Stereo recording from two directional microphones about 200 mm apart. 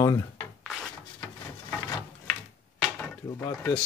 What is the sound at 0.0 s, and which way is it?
Rub, 20° left (ahead or behind).